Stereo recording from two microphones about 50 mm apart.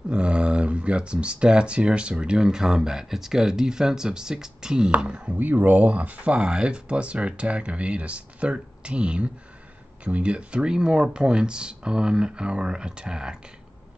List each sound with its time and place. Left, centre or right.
0.1 s speech: right
5.3 s speech: right; by 13.4 s centre